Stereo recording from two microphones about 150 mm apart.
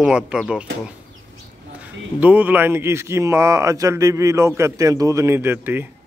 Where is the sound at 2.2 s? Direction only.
10° right (ahead or behind).